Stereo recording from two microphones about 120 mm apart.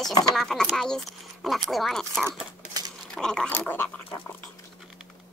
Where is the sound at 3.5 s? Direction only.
20° left (ahead or behind).